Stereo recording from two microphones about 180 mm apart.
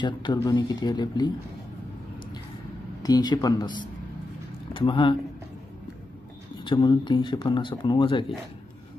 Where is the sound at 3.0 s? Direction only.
20° left (ahead or behind).